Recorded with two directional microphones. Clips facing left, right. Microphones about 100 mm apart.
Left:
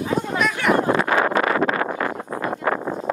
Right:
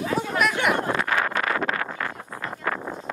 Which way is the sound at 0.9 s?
25° left (ahead or behind).